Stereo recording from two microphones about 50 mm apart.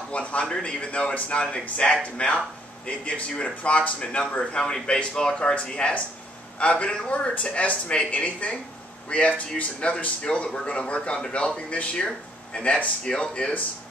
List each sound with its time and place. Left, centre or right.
0.1 s speech: left